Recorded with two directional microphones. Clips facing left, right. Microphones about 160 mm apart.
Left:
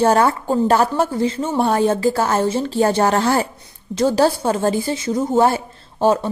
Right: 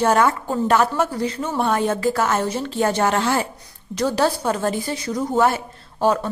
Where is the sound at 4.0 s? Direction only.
30° left (ahead or behind).